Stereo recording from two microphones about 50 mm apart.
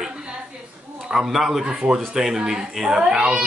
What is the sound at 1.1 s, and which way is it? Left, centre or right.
A child's voice, centre.